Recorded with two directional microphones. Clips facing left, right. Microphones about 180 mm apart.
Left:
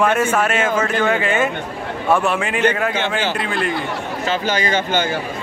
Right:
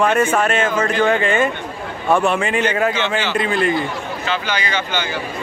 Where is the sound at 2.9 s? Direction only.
50° left (ahead or behind).